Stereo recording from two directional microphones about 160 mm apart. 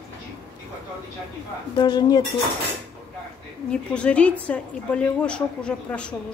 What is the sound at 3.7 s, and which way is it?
A woman's voice, 5° left (ahead or behind).